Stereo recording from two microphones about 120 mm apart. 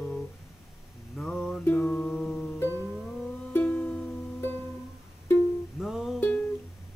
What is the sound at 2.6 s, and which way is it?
Music, 20° left (ahead or behind).